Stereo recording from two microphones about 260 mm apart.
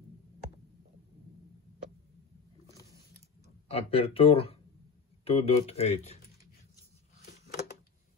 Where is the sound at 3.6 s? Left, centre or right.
Left.